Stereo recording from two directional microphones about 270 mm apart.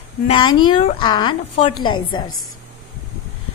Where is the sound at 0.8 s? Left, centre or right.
Centre.